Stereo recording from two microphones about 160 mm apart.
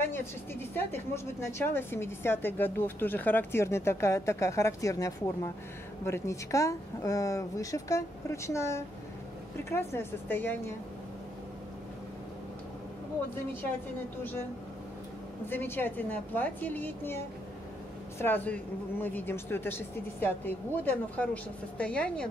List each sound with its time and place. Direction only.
0.0 s speech: 15° left (ahead or behind)
15.5 s speech: 10° left (ahead or behind)
18.2 s speech: 10° left (ahead or behind)